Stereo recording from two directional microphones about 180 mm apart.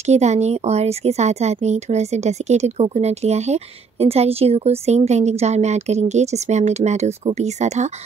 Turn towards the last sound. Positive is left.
turn(degrees=-40)  # may be behind; listen again after turning